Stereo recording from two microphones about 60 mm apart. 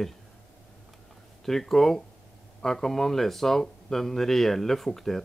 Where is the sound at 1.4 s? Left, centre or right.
Centre.